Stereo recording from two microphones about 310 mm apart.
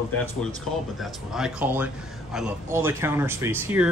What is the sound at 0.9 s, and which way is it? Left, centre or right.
Speech, centre.